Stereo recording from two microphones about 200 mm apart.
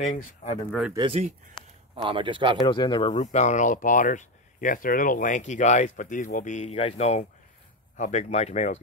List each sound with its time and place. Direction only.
0.0 s speech: 30° left (ahead or behind)
0.7 s speech: centre (ahead or behind)
0.9 s speech: 25° right (ahead or behind)
2.6 s speech: 25° left (ahead or behind)